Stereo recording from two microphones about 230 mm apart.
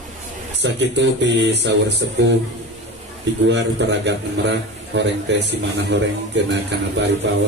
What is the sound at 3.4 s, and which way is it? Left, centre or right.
A man's voice, right.